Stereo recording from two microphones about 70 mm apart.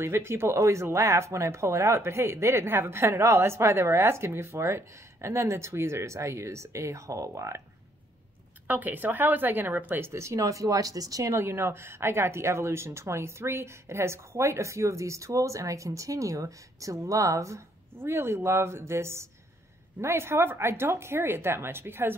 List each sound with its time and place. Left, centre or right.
0.0 s speech: right
8.6 s speech: right
17.9 s speech: right